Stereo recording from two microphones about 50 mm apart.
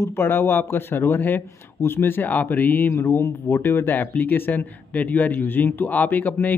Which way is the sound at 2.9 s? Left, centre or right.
Left.